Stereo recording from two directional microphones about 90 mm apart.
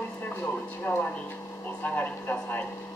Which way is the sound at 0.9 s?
25° left (ahead or behind).